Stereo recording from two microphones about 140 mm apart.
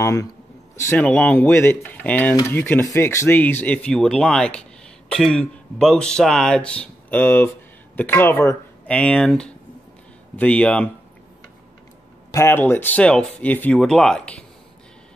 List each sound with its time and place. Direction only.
0.0 s a man's voice: 20° left (ahead or behind)
0.8 s speech: 10° left (ahead or behind)
12.3 s speech: 20° left (ahead or behind)